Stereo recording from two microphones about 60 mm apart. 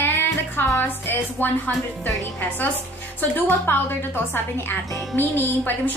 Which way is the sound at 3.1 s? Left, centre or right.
Left.